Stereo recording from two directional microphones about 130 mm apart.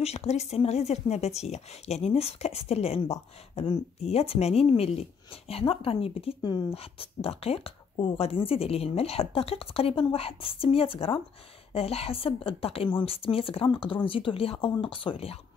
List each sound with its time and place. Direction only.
0.0 s a woman's voice: 55° left (ahead or behind)